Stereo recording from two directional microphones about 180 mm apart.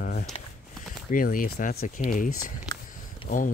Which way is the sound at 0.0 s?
45° left (ahead or behind).